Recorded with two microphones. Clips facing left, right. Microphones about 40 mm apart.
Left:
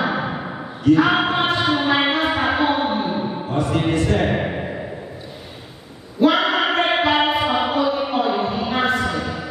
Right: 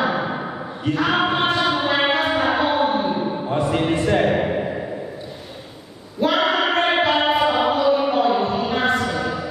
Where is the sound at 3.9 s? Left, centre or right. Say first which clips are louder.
Right 1 dB; centre.